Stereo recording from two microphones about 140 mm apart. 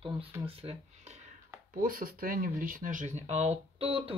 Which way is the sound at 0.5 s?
45° right (ahead or behind).